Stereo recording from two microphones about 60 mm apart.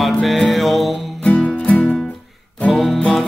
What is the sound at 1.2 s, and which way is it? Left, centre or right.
Music, left.